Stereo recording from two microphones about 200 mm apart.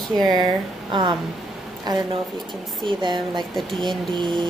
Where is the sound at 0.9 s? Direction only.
20° right (ahead or behind).